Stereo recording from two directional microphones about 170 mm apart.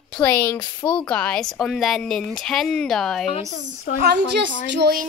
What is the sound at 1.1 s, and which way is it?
A woman's voice, 5° left (ahead or behind).